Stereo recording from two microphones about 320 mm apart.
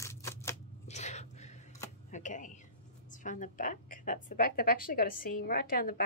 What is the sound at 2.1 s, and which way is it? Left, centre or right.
A woman's voice, left.